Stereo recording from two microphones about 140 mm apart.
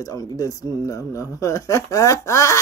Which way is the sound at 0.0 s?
25° left (ahead or behind).